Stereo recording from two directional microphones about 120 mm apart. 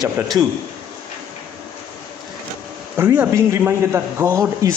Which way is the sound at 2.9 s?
20° right (ahead or behind).